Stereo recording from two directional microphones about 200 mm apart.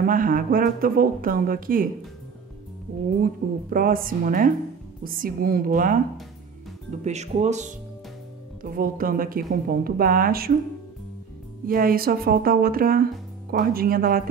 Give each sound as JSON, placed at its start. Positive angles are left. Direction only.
{"t": 0.0, "sound": "speech", "side_deg": -45}
{"t": 3.4, "sound": "speech", "side_deg": -45}
{"t": 11.6, "sound": "speech", "side_deg": -45}